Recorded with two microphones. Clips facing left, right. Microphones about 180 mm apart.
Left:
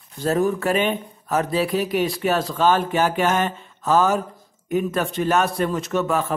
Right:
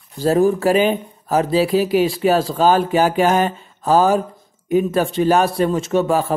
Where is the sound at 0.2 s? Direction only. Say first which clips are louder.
Right 5 dB; 35° right (ahead or behind).